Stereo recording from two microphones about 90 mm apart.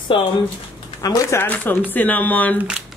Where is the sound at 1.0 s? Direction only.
40° left (ahead or behind).